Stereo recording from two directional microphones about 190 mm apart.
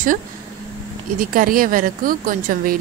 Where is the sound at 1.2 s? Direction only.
45° right (ahead or behind).